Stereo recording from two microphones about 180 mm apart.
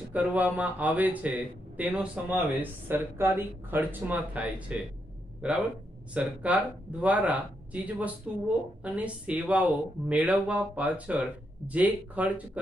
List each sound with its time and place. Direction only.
0.1 s speech: 10° right (ahead or behind)